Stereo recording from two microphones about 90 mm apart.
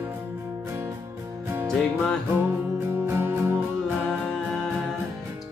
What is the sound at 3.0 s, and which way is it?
Music, 25° right (ahead or behind).